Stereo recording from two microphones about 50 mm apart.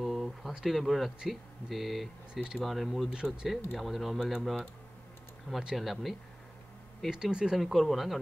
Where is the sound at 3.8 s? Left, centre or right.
Centre.